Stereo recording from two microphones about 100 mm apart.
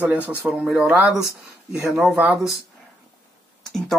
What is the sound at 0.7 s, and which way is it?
Speech, 5° right (ahead or behind).